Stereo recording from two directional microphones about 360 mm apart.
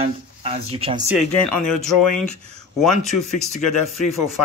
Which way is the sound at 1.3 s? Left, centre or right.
Left.